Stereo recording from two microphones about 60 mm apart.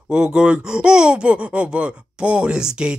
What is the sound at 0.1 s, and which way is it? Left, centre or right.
Speech, centre.